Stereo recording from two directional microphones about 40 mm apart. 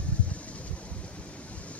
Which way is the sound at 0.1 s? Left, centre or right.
Left.